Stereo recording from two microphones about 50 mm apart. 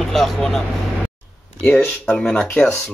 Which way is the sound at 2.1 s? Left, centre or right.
Centre.